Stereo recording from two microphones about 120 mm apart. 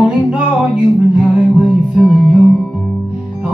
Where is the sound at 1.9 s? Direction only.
10° left (ahead or behind).